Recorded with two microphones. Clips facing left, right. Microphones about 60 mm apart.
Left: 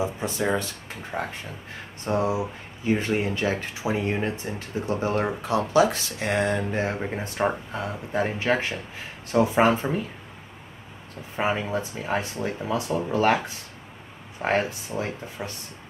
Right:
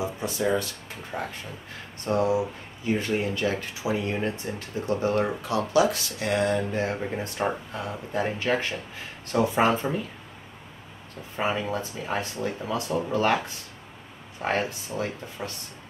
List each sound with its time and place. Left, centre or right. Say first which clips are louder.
0.2 s speech: even; left; by 10.0 s centre
11.3 s speech: left 2 dB; centre
14.4 s speech: left 3 dB; centre